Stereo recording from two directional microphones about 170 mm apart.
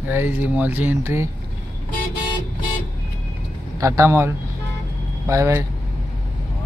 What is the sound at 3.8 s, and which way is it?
Speech, 15° right (ahead or behind).